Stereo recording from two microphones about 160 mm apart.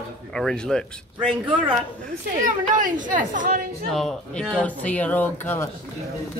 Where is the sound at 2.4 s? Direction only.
55° right (ahead or behind).